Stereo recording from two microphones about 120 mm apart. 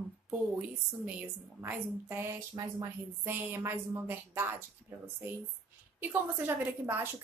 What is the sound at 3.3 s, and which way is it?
A woman's voice, 20° right (ahead or behind).